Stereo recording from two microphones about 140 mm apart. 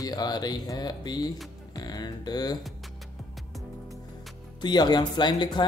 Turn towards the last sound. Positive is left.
turn(degrees=35)  # may be behind; listen again after turning